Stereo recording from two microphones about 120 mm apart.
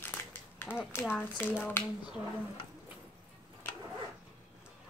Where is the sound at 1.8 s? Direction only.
20° left (ahead or behind).